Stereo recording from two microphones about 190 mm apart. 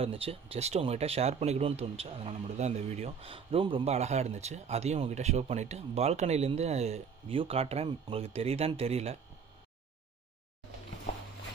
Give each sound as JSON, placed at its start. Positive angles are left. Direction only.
{"t": 0.0, "sound": "speech", "side_deg": -30}